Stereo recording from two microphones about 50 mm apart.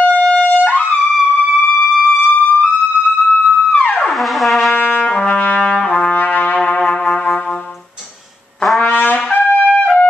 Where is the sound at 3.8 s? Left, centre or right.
Left.